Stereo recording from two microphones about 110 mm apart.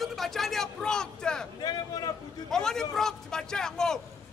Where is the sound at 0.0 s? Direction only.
Centre (ahead or behind).